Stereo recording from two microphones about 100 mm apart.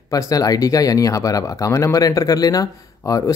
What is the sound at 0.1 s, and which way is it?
Speech, 35° left (ahead or behind).